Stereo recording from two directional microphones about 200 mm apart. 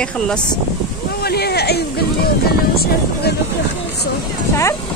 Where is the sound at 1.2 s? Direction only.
50° left (ahead or behind).